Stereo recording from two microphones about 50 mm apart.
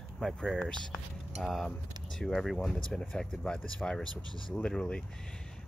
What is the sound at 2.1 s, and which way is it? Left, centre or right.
Speech, centre.